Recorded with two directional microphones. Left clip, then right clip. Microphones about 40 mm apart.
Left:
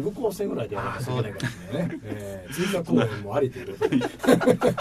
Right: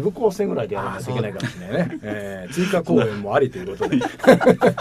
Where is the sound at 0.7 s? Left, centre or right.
Centre.